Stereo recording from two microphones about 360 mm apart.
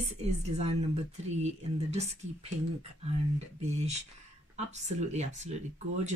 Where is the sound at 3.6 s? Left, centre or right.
Centre.